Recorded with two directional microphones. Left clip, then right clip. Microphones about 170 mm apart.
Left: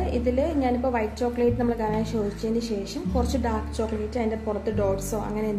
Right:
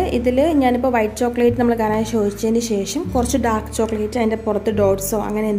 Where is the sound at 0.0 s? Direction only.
50° right (ahead or behind).